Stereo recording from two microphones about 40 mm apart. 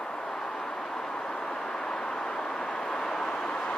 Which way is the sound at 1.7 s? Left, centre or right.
Centre.